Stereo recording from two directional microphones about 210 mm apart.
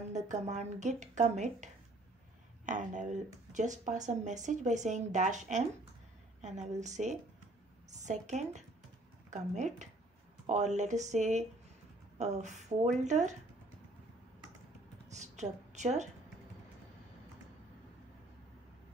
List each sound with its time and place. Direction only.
0.1 s speech: 35° right (ahead or behind)
15.1 s a woman's voice: 35° right (ahead or behind)